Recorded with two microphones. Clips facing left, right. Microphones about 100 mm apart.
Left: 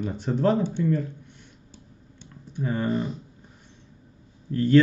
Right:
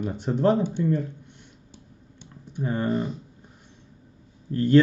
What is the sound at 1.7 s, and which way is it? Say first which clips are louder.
Computer keyboard: even; 15° right (ahead or behind).